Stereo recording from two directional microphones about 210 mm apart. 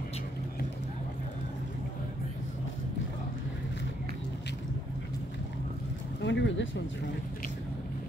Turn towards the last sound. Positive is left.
turn(degrees=60)  # may be behind; listen again after turning